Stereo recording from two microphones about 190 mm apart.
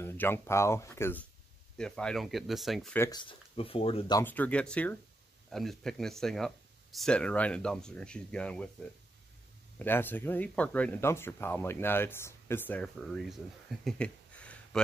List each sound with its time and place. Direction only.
0.0 s speech: 10° left (ahead or behind)
3.0 s speech: 20° left (ahead or behind)
4.2 s speech: 10° left (ahead or behind)
9.8 s speech: 10° left (ahead or behind)